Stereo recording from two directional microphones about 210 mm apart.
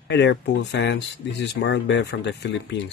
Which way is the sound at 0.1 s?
55° left (ahead or behind).